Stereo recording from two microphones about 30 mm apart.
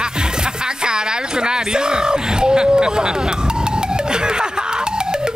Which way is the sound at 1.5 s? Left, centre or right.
Right.